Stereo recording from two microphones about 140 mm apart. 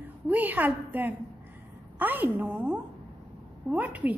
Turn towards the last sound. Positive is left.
turn(degrees=-10)  # may be behind; listen again after turning